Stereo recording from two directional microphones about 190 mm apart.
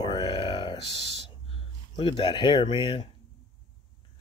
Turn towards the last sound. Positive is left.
turn(degrees=25)  # may be behind; listen again after turning